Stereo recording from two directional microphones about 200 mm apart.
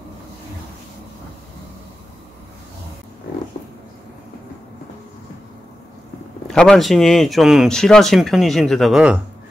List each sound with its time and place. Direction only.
6.4 s speech: 5° left (ahead or behind)